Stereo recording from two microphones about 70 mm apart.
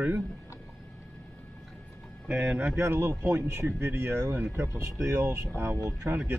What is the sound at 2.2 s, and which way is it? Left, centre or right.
Speech, right.